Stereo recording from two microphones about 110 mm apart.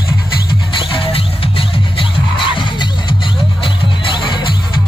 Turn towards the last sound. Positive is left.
turn(degrees=45)  # may be behind; listen again after turning